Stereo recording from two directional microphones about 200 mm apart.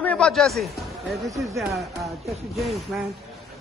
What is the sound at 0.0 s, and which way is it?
Speech, 5° left (ahead or behind).